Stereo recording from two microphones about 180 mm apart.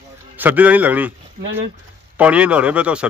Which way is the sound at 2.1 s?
5° right (ahead or behind).